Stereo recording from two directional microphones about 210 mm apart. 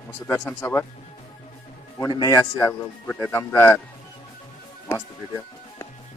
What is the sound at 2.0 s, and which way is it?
A man's voice, 15° left (ahead or behind).